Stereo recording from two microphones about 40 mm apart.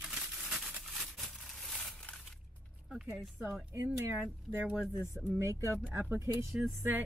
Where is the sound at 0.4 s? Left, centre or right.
Centre.